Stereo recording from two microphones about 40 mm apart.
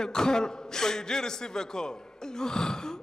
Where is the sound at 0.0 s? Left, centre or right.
Centre.